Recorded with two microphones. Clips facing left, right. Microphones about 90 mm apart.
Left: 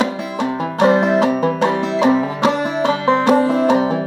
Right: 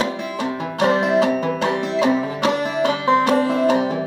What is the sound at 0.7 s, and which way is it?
Music, 40° left (ahead or behind).